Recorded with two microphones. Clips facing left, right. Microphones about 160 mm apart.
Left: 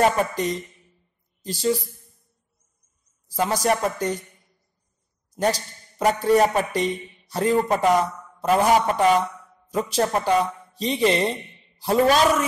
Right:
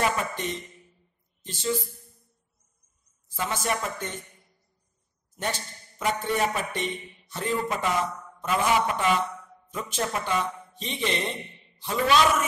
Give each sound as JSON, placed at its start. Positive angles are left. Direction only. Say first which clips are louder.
{"t": 0.0, "sound": "a woman's voice", "louder": "left 7 dB", "side_deg": 40}
{"t": 3.3, "sound": "speech", "louder": "left 7 dB", "side_deg": 40}
{"t": 5.3, "sound": "speech", "louder": "left 9 dB", "side_deg": 35}